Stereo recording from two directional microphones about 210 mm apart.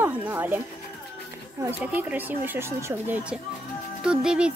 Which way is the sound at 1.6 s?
10° right (ahead or behind).